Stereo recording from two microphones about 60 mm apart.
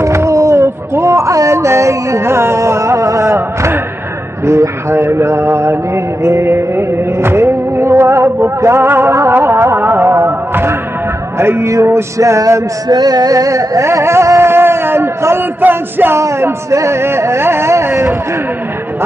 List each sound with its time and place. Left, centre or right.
0.0 s a sound: right
4.5 s mantra: right
6.2 s music: right
12.2 s male singing: right
13.9 s music: right
14.5 s a sound: right
15.6 s music: right
16.2 s speech: right